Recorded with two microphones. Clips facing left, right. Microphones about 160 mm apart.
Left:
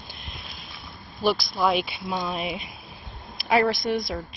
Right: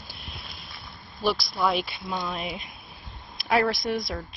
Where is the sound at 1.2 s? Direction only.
Centre (ahead or behind).